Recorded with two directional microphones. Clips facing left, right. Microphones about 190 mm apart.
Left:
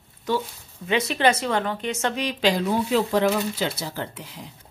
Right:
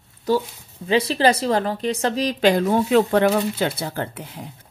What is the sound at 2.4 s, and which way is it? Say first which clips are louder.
Speech: right 4 dB; 50° right (ahead or behind).